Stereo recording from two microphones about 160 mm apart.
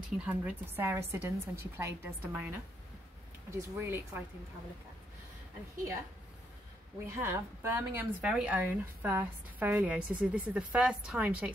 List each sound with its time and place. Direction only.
0.2 s a woman's voice: 10° right (ahead or behind)
7.1 s a woman's voice: 15° right (ahead or behind)